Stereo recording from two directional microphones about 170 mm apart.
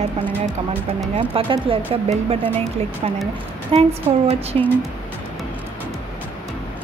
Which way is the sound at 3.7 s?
35° right (ahead or behind).